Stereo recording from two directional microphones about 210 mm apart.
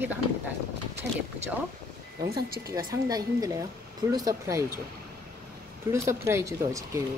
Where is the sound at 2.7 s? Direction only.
15° right (ahead or behind).